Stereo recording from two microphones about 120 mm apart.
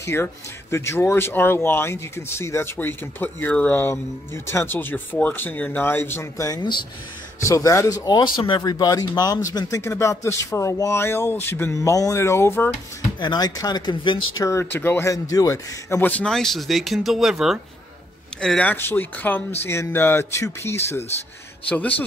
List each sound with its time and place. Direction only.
0.0 s speech: 20° left (ahead or behind); by 6.9 s 40° left (ahead or behind)
7.4 s speech: 25° left (ahead or behind)
8.2 s speech: 40° left (ahead or behind); by 12.7 s 20° left (ahead or behind)
13.2 s speech: 35° left (ahead or behind)
14.5 s a man's voice: 20° left (ahead or behind); by 17.6 s 5° right (ahead or behind)
18.4 s a man's voice: 10° left (ahead or behind)